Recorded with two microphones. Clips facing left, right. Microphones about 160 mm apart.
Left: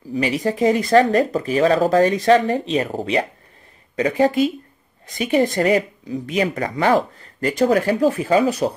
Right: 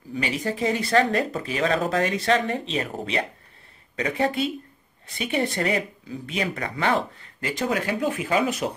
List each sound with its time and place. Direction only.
0.1 s speech: 35° left (ahead or behind)